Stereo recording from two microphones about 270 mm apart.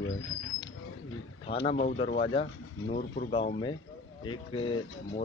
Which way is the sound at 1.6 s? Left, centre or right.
Left.